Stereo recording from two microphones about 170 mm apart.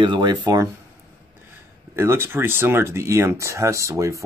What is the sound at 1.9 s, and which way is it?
Speech, 15° right (ahead or behind).